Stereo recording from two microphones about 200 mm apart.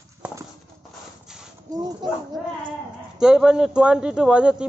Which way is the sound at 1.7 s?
20° right (ahead or behind).